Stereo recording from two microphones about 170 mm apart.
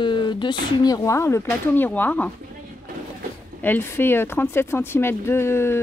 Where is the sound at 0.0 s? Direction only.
25° left (ahead or behind).